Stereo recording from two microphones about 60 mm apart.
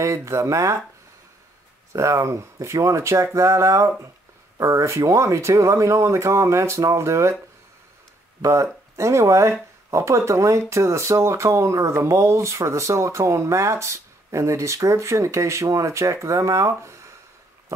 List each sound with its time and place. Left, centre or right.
0.0 s speech: right
1.9 s speech: right
8.4 s speech: right